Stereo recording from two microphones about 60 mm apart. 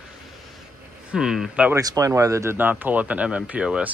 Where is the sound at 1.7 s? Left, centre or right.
Right.